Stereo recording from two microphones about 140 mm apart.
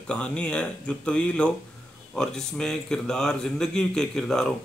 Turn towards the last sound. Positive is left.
turn(degrees=5)  # may be behind; listen again after turning